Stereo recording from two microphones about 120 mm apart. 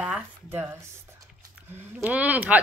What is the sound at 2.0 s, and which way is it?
Speech, 15° right (ahead or behind).